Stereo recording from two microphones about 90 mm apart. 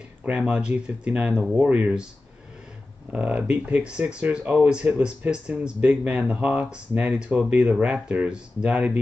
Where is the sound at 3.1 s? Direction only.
15° right (ahead or behind).